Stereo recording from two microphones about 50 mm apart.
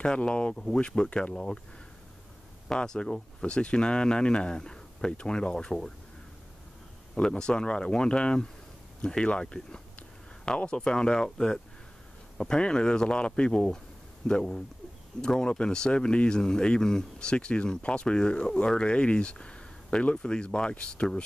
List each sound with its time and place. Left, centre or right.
0.0 s speech: centre
2.7 s speech: centre
7.2 s speech: centre